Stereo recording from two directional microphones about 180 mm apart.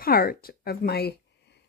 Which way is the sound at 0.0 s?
55° left (ahead or behind).